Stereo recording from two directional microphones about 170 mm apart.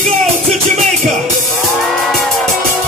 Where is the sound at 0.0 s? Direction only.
45° right (ahead or behind).